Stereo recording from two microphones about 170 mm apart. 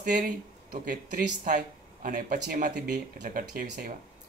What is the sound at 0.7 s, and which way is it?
Speech, 50° right (ahead or behind).